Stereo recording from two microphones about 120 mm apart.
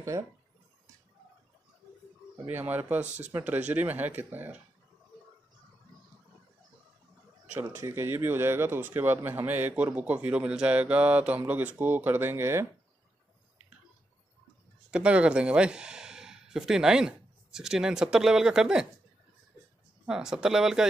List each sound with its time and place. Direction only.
0.1 s speech: 25° right (ahead or behind)
2.4 s speech: 15° right (ahead or behind)
7.8 s speech: 20° right (ahead or behind)
14.9 s speech: 10° right (ahead or behind)
20.1 s speech: 5° right (ahead or behind)